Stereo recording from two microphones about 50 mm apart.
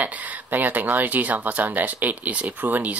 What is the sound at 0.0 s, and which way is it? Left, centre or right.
A man's voice, right.